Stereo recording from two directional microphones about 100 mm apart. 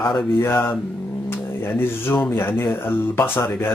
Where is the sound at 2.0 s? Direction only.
20° left (ahead or behind).